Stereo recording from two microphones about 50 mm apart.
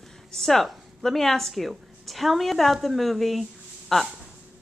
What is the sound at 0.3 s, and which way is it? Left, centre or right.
A woman's voice, centre.